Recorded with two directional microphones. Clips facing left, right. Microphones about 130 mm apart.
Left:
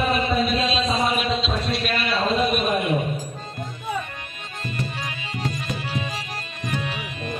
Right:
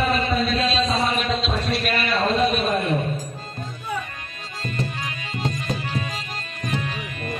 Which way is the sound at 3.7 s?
20° left (ahead or behind).